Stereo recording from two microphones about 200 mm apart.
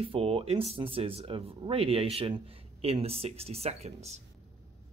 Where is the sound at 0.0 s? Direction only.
30° right (ahead or behind).